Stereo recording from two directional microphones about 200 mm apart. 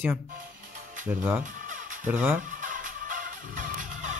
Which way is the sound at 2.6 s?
40° right (ahead or behind).